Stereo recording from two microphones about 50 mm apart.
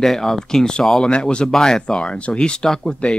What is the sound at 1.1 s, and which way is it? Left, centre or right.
Speech, centre.